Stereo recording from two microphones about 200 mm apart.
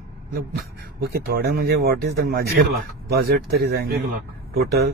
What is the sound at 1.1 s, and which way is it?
Speech, 55° right (ahead or behind).